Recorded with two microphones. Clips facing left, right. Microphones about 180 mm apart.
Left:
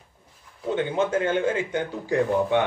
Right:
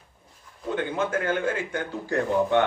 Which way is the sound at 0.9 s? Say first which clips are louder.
Left 3 dB; 25° left (ahead or behind).